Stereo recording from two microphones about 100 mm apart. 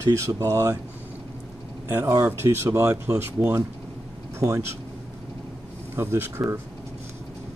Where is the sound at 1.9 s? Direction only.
35° right (ahead or behind).